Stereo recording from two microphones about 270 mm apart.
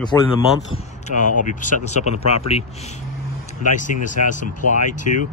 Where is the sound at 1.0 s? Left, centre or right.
Left.